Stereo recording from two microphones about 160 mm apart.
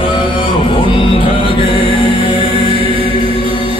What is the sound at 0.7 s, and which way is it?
Music, 35° left (ahead or behind).